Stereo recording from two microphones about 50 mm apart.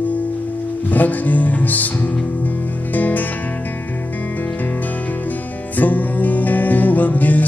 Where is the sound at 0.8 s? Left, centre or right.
Left.